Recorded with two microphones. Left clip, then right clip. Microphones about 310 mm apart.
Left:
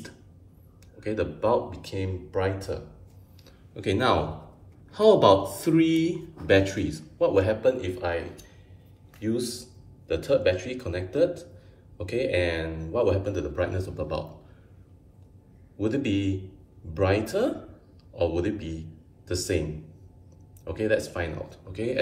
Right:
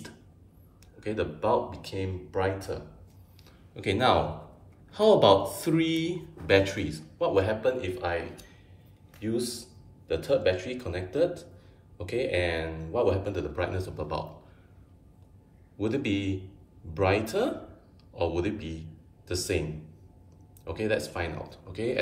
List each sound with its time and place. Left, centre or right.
0.9 s speech: centre
3.4 s a sound: centre
5.0 s a man's voice: centre
5.7 s a man's voice: centre
15.8 s a man's voice: centre
20.6 s speech: centre